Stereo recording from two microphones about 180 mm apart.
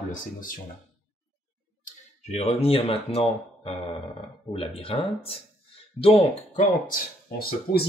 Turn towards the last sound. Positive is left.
turn(degrees=55)  # may be behind; listen again after turning